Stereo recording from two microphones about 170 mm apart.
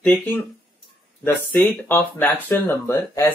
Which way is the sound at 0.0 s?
10° left (ahead or behind).